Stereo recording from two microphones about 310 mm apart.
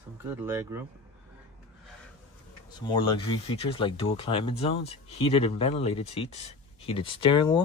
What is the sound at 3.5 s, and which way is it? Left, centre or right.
Speech, centre.